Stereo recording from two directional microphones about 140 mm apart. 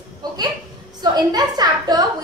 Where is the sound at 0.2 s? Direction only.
30° right (ahead or behind).